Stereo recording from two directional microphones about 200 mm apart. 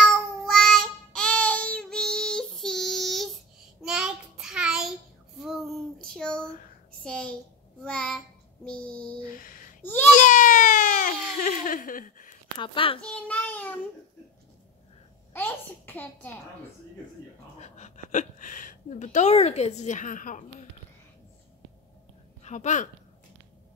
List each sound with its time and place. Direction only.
0.0 s child singing: centre (ahead or behind)
5.4 s a sound: centre (ahead or behind)
7.0 s a child's voice: 5° left (ahead or behind)
7.8 s child singing: 5° left (ahead or behind)
8.6 s music: 5° left (ahead or behind)
9.2 s a sound: 40° left (ahead or behind)
9.8 s baby cry: 10° left (ahead or behind)
10.1 s baby cry: 40° left (ahead or behind)
12.5 s a child's voice: 25° left (ahead or behind)
13.0 s child singing: 5° left (ahead or behind)
15.3 s a sound: 10° left (ahead or behind)
17.6 s speech: 35° left (ahead or behind)
22.4 s speech: 35° left (ahead or behind)